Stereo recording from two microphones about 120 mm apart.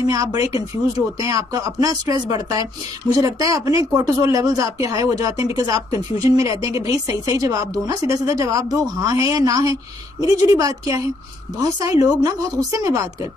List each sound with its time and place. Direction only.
0.0 s speech: 25° right (ahead or behind)